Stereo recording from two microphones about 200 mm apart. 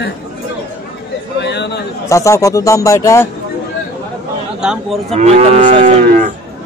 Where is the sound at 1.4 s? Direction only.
60° left (ahead or behind).